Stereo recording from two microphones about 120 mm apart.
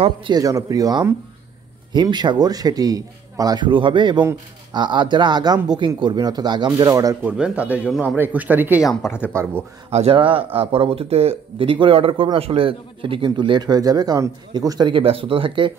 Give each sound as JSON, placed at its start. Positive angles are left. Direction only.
{"t": 0.3, "sound": "a man's voice", "side_deg": -30}
{"t": 7.2, "sound": "speech", "side_deg": -10}
{"t": 9.0, "sound": "speech", "side_deg": -5}
{"t": 9.8, "sound": "speech", "side_deg": -60}
{"t": 10.1, "sound": "speech", "side_deg": -50}
{"t": 14.9, "sound": "speech", "side_deg": -50}